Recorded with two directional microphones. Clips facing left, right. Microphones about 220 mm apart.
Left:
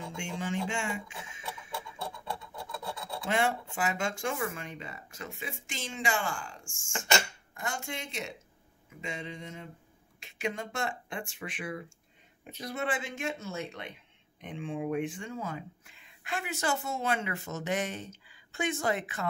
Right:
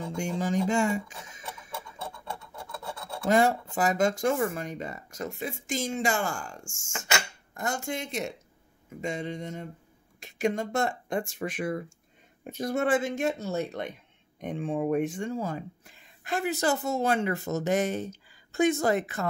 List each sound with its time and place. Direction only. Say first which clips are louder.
0.1 s speech: right 7 dB; 40° right (ahead or behind)
3.3 s speech: right 7 dB; 40° right (ahead or behind)